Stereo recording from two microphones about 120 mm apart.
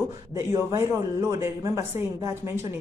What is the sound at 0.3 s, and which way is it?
Speech, 25° right (ahead or behind).